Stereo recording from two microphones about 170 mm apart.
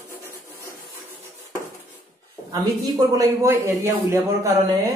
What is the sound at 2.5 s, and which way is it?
Speech, 20° right (ahead or behind).